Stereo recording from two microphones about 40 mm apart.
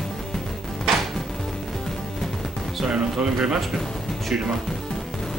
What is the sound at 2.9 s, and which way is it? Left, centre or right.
Music, centre.